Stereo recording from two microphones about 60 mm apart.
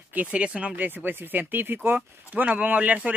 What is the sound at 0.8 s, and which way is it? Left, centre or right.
Speech, right.